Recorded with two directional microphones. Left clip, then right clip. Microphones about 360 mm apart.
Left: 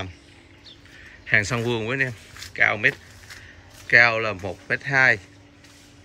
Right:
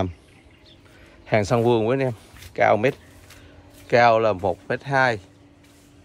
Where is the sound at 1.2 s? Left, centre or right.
Centre.